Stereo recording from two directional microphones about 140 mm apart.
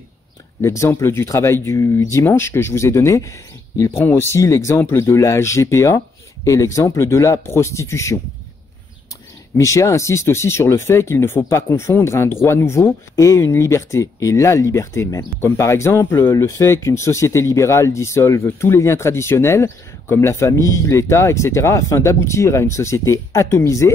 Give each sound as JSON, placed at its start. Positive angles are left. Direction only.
{"t": 0.6, "sound": "speech", "side_deg": 20}
{"t": 9.6, "sound": "speech", "side_deg": 20}